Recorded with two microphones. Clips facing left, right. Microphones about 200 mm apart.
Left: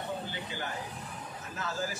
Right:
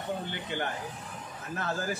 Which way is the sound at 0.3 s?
60° right (ahead or behind).